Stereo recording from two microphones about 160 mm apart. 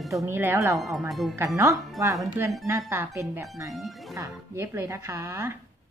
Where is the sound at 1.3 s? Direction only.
15° right (ahead or behind).